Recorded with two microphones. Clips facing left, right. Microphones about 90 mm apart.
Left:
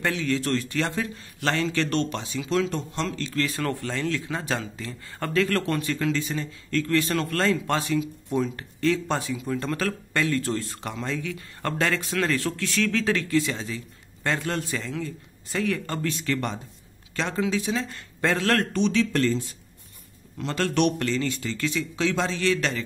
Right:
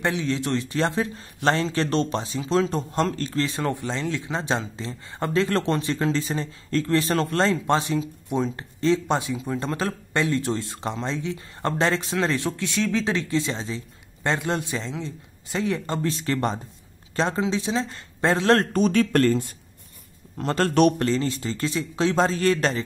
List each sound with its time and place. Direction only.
0.0 s a man's voice: 25° right (ahead or behind); by 3.4 s 40° right (ahead or behind)
3.4 s a man's voice: 20° right (ahead or behind); by 19.5 s 50° right (ahead or behind)
20.3 s a man's voice: 40° right (ahead or behind)